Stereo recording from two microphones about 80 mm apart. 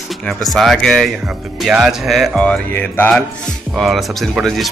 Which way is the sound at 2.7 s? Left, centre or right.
Left.